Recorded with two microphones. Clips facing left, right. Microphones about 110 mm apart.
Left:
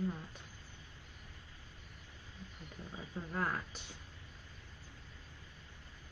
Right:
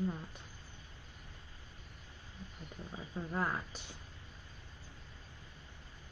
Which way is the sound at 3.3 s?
15° right (ahead or behind).